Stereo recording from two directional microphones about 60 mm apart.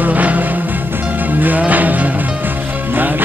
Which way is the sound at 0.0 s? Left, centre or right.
Right.